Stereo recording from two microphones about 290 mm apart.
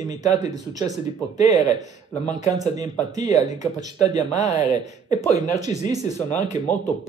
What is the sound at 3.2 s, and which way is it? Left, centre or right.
Speech, left.